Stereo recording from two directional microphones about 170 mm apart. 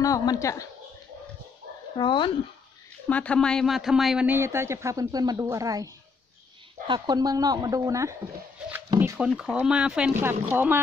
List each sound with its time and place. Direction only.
0.0 s a woman's voice: 20° left (ahead or behind)
2.0 s a woman's voice: 30° left (ahead or behind)
3.1 s speech: 5° left (ahead or behind); by 5.9 s 20° right (ahead or behind)
6.9 s speech: 25° right (ahead or behind)
9.2 s speech: 5° right (ahead or behind)